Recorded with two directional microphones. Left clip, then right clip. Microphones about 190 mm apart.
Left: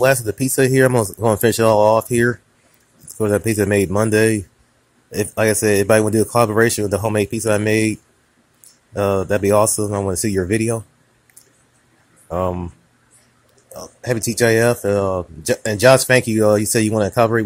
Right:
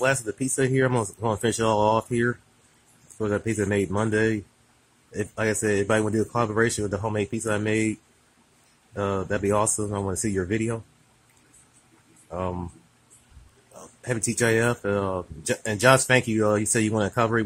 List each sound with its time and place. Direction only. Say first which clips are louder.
0.0 s speech: left 8 dB; 15° left (ahead or behind)
12.3 s speech: left 9 dB; 20° left (ahead or behind)
13.7 s speech: left 8 dB; 10° left (ahead or behind)